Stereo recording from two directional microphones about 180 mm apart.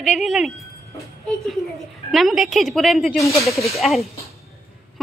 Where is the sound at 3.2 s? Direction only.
15° left (ahead or behind).